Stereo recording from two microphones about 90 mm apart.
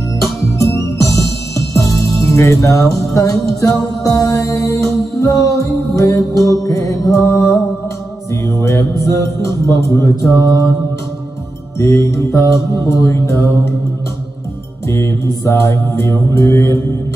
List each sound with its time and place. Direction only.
0.2 s music: 35° left (ahead or behind)
11.8 s music: 35° left (ahead or behind)
14.9 s music: 35° left (ahead or behind)